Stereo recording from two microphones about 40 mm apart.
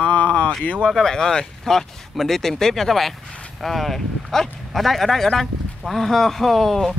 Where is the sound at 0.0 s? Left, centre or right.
Left.